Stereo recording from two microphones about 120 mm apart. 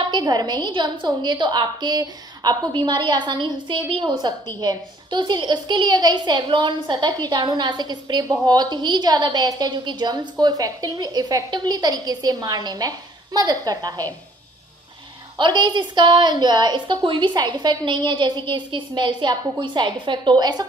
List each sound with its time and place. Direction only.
0.1 s a woman's voice: 35° right (ahead or behind)
15.3 s a woman's voice: 40° right (ahead or behind)